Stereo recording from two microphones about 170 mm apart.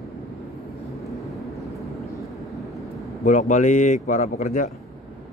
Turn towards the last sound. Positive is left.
turn(degrees=45)  # may be behind; listen again after turning